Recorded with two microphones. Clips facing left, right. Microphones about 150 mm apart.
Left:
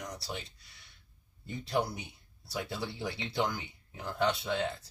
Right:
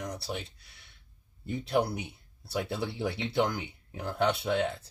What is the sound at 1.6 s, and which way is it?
Speech, 60° right (ahead or behind).